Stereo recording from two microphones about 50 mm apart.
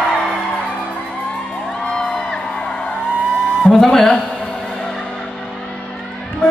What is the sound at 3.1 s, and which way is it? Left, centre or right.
Music, right.